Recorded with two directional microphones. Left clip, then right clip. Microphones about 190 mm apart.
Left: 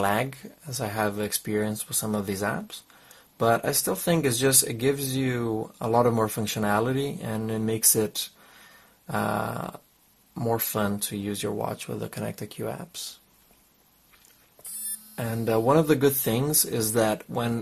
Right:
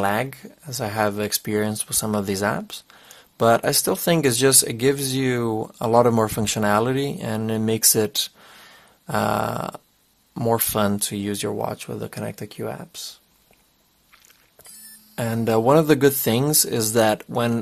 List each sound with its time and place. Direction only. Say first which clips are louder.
0.0 s speech: right 3 dB; 20° right (ahead or behind)
15.1 s speech: right 5 dB; 30° right (ahead or behind)